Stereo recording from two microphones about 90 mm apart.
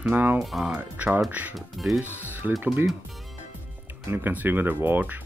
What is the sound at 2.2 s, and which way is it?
Speech, 20° right (ahead or behind).